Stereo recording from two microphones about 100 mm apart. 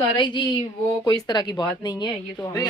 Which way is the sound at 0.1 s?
50° left (ahead or behind).